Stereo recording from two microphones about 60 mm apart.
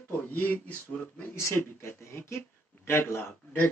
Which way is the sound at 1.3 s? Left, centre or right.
Left.